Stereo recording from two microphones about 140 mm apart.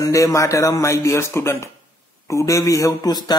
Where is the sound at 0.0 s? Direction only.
20° left (ahead or behind).